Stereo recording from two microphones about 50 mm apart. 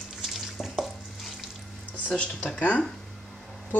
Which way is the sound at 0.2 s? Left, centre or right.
Centre.